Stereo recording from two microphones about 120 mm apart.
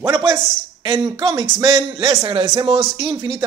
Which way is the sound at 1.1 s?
35° right (ahead or behind).